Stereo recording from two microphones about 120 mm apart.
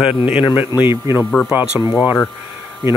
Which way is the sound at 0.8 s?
20° right (ahead or behind).